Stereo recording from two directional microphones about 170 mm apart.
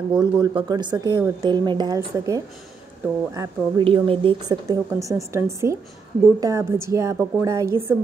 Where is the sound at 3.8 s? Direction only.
30° right (ahead or behind).